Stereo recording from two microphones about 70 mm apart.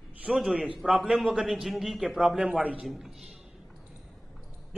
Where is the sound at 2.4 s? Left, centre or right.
Centre.